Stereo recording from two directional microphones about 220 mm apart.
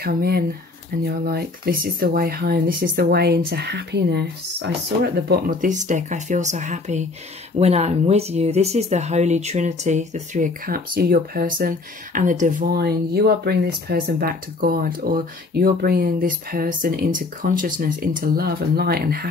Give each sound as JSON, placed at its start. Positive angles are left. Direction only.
{"t": 0.0, "sound": "speech", "side_deg": -45}